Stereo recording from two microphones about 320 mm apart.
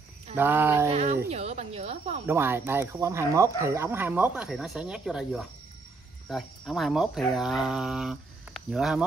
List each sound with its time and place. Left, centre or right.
0.4 s speech: centre
0.9 s speech: centre
2.2 s speech: centre